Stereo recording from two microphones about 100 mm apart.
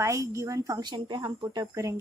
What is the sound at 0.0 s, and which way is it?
A woman's voice, 30° right (ahead or behind).